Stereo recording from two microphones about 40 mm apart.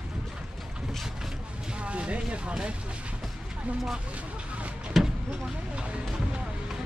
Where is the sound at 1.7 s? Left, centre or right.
Right.